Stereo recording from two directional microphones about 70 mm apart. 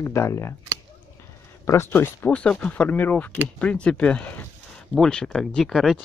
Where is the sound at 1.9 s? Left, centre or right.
Left.